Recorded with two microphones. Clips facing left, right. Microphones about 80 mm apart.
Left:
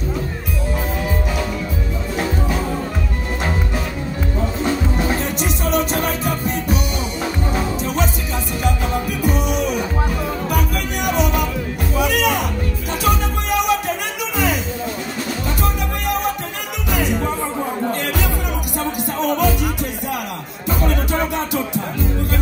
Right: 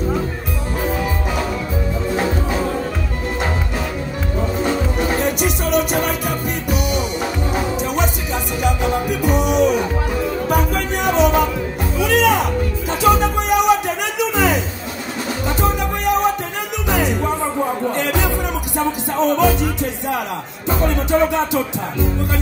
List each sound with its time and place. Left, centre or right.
5.2 s music: centre
8.6 s music: centre
18.8 s music: right
20.8 s music: right